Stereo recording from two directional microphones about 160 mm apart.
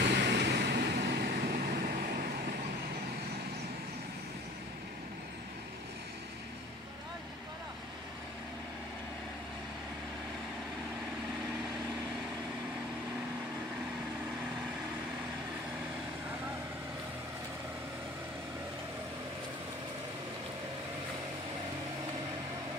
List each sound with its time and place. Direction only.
0.0 s vehicle: 90° right; by 2.5 s 65° right (ahead or behind)